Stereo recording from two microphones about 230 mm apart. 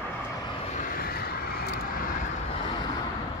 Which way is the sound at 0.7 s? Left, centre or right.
Left.